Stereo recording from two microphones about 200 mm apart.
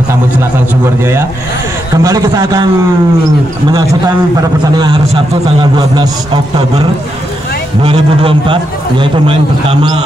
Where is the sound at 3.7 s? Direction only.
20° right (ahead or behind).